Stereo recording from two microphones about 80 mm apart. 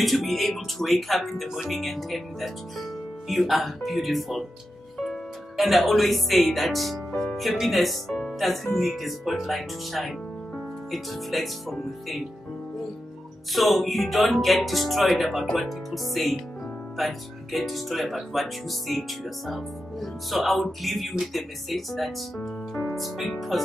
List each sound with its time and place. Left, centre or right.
0.0 s speech: centre
13.5 s speech: centre
22.4 s music: left
22.9 s speech: centre